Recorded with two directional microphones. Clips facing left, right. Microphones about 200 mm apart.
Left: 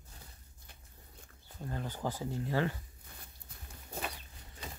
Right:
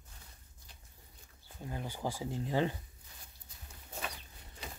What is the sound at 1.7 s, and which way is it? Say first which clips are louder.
Speech: left 1 dB; 10° right (ahead or behind).